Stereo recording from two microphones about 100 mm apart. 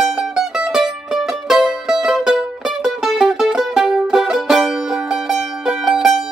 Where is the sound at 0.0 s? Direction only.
Centre (ahead or behind).